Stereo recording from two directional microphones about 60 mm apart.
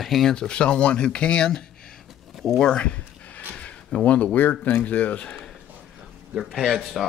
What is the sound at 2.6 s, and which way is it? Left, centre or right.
Speech, centre.